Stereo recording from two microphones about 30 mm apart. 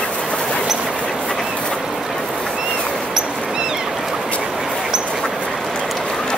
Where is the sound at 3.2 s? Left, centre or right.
Right.